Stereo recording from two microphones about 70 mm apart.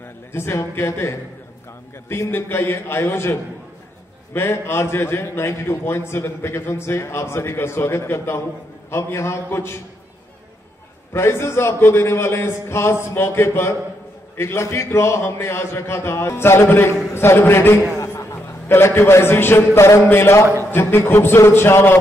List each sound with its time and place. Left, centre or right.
0.3 s a man's voice: left
11.1 s a man's voice: left